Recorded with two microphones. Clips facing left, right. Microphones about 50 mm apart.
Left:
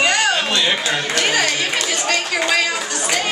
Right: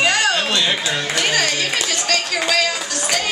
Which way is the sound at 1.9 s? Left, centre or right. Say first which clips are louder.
Left 1 dB; centre.